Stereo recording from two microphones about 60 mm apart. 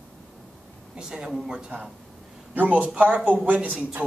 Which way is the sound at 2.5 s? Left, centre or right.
Right.